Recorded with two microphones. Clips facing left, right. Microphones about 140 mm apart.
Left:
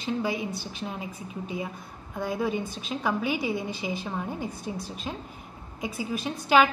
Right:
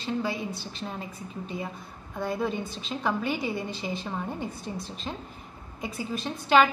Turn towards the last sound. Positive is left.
turn(degrees=10)  # may be behind; listen again after turning